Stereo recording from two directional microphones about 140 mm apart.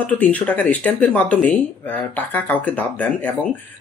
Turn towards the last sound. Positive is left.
turn(degrees=10)  # may be behind; listen again after turning